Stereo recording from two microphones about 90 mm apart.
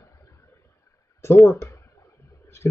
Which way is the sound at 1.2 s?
30° left (ahead or behind).